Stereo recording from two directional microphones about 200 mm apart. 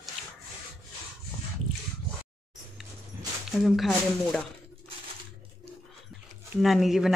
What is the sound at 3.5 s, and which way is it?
Speech, centre (ahead or behind).